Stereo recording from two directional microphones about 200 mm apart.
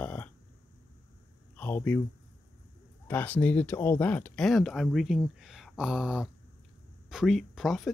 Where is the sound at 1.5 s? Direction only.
10° left (ahead or behind).